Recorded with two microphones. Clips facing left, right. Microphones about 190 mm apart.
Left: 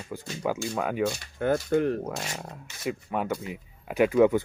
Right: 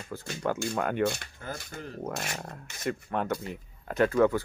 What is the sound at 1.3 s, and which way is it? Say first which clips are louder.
Speech: left 16 dB; 70° left (ahead or behind).